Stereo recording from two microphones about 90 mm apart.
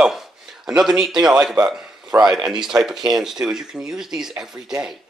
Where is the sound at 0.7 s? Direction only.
5° right (ahead or behind).